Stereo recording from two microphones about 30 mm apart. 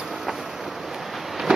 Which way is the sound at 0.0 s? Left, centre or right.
Centre.